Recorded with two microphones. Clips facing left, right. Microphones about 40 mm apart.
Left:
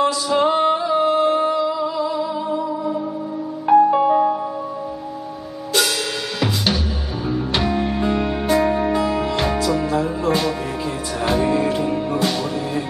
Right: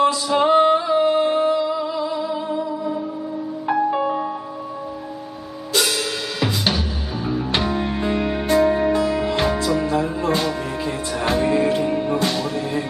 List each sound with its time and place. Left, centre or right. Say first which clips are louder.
0.0 s music: even; centre
6.4 s drum kit: left 1 dB; centre
7.2 s music: left 1 dB; centre